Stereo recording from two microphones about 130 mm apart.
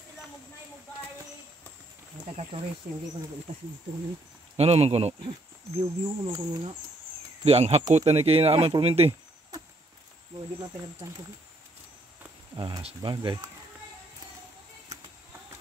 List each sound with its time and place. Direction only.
4.6 s speech: 55° right (ahead or behind)
5.8 s speech: 40° right (ahead or behind)
7.4 s speech: 50° right (ahead or behind)
12.5 s speech: 40° right (ahead or behind)